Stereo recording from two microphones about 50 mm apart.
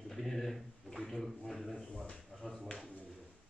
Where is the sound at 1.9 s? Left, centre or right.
Centre.